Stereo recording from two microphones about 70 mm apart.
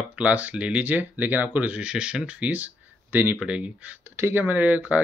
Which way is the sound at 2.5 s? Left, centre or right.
Right.